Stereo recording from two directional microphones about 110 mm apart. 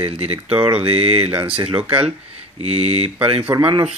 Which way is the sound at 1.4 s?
55° right (ahead or behind).